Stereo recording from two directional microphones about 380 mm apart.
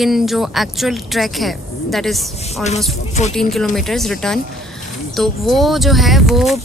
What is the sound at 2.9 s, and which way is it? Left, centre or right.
Speech, centre.